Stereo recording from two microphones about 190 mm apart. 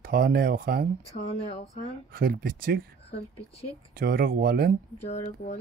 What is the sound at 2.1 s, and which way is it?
Speech, 50° right (ahead or behind).